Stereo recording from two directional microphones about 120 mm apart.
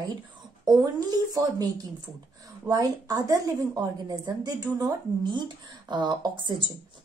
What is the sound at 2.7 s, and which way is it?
A woman's voice, 30° right (ahead or behind).